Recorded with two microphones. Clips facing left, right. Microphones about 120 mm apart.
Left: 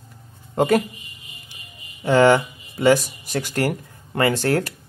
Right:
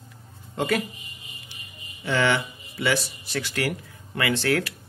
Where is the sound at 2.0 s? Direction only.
45° left (ahead or behind).